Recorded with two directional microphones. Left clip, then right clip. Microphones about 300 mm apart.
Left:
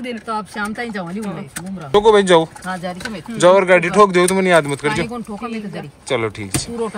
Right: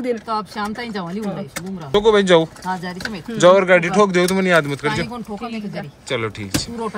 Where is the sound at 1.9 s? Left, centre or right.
Centre.